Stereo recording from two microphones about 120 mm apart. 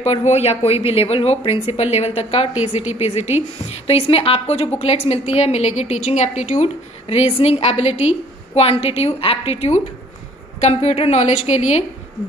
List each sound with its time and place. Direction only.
0.0 s a woman's voice: 65° left (ahead or behind)